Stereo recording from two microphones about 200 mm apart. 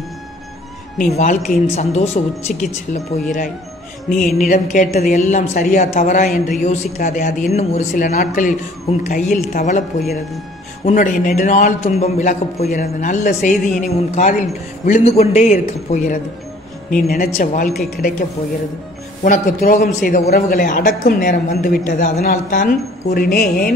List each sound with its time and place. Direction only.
1.1 s speech: 35° left (ahead or behind)
4.5 s speech: 40° left (ahead or behind)
10.9 s a man's voice: 40° left (ahead or behind)
19.2 s a man's voice: 45° left (ahead or behind)